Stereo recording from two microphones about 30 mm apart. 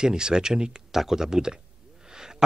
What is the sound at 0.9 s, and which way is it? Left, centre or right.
Speech, centre.